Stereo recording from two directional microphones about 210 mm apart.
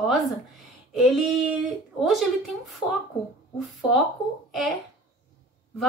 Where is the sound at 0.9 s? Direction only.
Centre (ahead or behind).